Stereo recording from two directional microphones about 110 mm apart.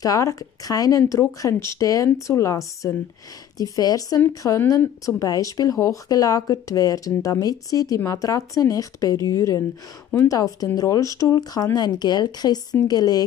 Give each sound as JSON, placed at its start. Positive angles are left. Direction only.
{"t": 0.0, "sound": "a woman's voice", "side_deg": 30}